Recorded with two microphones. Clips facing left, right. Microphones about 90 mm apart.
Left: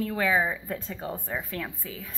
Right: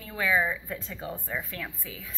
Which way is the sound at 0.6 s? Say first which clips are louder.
Left 3 dB; 40° left (ahead or behind).